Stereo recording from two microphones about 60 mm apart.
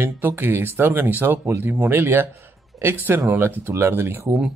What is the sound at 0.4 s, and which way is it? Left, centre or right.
Speech, right.